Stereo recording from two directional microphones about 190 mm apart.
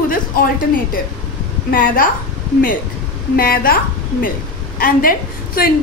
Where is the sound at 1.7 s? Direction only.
45° left (ahead or behind).